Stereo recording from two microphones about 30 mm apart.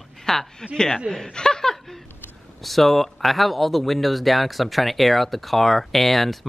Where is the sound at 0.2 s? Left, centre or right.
Centre.